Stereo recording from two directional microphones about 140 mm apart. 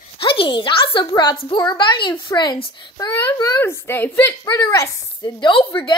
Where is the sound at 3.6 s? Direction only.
15° left (ahead or behind).